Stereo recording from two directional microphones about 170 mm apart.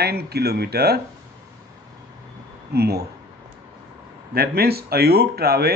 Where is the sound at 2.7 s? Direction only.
70° right (ahead or behind).